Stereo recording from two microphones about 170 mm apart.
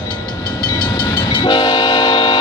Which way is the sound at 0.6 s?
25° left (ahead or behind).